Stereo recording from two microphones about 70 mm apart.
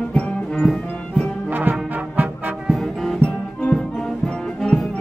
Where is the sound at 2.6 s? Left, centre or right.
Centre.